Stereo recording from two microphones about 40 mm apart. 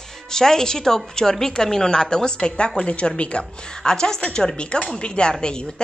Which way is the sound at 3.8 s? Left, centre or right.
Centre.